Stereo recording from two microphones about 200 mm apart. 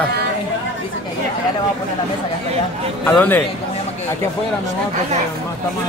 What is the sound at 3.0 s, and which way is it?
Speech, 10° left (ahead or behind).